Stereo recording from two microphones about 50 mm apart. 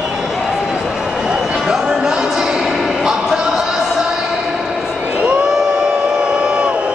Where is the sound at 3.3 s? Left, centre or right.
Centre.